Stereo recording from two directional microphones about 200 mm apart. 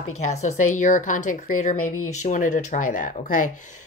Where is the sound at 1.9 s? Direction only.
90° left.